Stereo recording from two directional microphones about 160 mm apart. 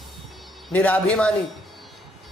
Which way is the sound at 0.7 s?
10° left (ahead or behind).